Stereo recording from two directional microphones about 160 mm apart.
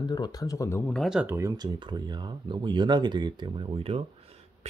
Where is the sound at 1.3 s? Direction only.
25° right (ahead or behind).